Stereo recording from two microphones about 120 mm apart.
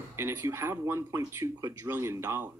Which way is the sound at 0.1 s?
20° right (ahead or behind).